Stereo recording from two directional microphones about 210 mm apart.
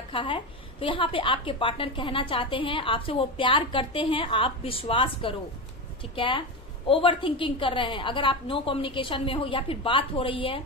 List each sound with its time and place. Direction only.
0.1 s a woman's voice: 25° left (ahead or behind)